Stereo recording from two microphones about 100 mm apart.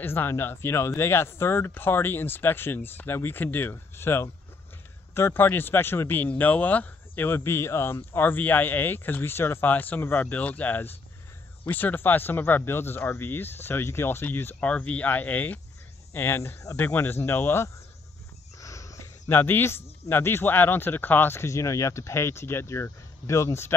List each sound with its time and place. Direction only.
0.0 s speech: 20° left (ahead or behind)
18.6 s speech: 35° left (ahead or behind)